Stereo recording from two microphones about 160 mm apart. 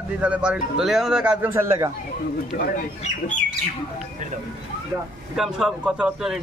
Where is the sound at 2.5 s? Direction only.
60° left (ahead or behind).